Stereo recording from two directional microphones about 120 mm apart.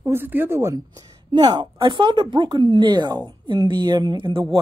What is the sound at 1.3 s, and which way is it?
A woman's voice, 40° right (ahead or behind).